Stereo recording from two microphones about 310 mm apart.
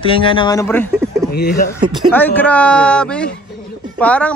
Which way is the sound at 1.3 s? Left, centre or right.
Left.